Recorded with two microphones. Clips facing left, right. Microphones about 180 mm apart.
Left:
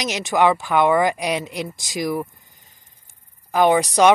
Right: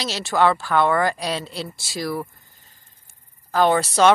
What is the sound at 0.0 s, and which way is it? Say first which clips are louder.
A woman's voice: left 1 dB; 15° left (ahead or behind).